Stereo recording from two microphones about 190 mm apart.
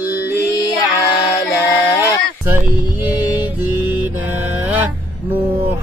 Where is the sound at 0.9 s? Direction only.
15° left (ahead or behind).